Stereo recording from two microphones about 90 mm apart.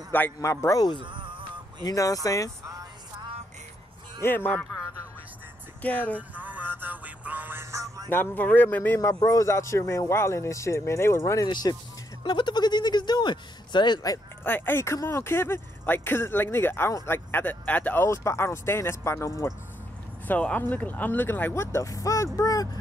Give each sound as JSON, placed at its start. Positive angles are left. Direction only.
{"t": 0.4, "sound": "a man's voice", "side_deg": 35}
{"t": 0.9, "sound": "music", "side_deg": -65}
{"t": 1.9, "sound": "a man's voice", "side_deg": 40}
{"t": 4.2, "sound": "speech", "side_deg": 25}
{"t": 5.8, "sound": "speech", "side_deg": 15}
{"t": 6.1, "sound": "music", "side_deg": -20}
{"t": 7.7, "sound": "music", "side_deg": -35}
{"t": 8.1, "sound": "a man's voice", "side_deg": 20}
{"t": 11.4, "sound": "speech", "side_deg": 50}
{"t": 14.4, "sound": "speech", "side_deg": 25}
{"t": 18.0, "sound": "a man's voice", "side_deg": 30}
{"t": 20.2, "sound": "speech", "side_deg": 15}
{"t": 21.7, "sound": "a man's voice", "side_deg": 40}